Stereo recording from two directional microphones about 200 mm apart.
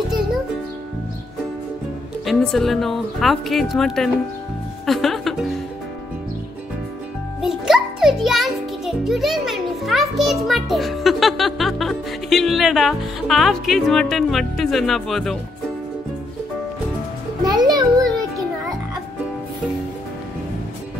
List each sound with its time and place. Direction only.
2.2 s speech: centre (ahead or behind)
7.4 s a child's voice: centre (ahead or behind)
17.4 s music: 20° right (ahead or behind)